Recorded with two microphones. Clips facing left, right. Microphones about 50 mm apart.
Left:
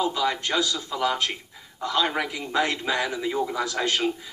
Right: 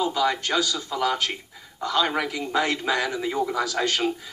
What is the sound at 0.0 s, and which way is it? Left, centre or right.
A man's voice, centre.